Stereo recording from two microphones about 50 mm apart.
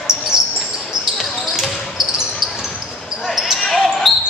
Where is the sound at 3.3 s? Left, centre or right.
Centre.